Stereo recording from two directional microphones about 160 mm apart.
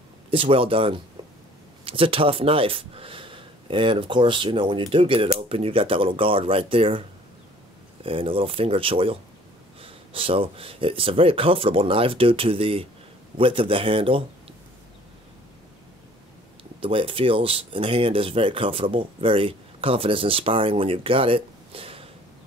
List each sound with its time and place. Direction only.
0.3 s speech: 35° right (ahead or behind)
16.8 s speech: 35° right (ahead or behind)